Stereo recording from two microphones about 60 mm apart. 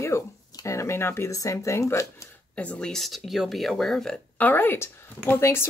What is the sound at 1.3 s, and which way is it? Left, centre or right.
Speech, left.